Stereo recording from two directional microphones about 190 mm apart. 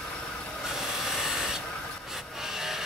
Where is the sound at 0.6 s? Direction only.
Centre (ahead or behind).